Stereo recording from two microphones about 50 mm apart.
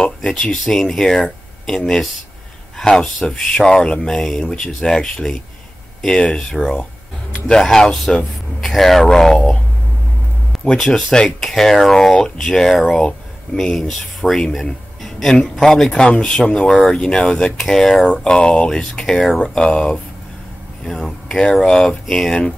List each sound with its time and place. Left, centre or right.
0.0 s speech: centre
2.8 s speech: centre
10.8 s speech: centre
18.0 s speech: centre
21.3 s speech: centre